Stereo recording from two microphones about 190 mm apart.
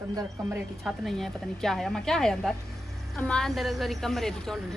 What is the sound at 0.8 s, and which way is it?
Speech, centre (ahead or behind).